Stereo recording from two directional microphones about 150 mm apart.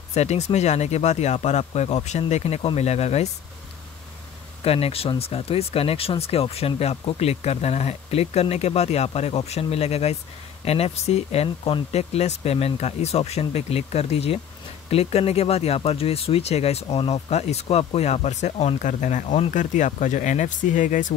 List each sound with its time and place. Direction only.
0.1 s speech: 45° left (ahead or behind)
4.6 s speech: 40° left (ahead or behind); by 21.1 s 60° left (ahead or behind)